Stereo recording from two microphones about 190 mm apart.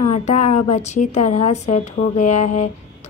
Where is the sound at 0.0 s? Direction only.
35° left (ahead or behind).